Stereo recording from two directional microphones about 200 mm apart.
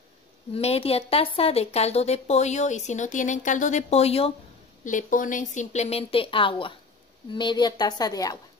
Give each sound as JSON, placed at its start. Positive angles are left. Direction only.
{"t": 0.5, "sound": "a woman's voice", "side_deg": 30}
{"t": 4.8, "sound": "a woman's voice", "side_deg": 40}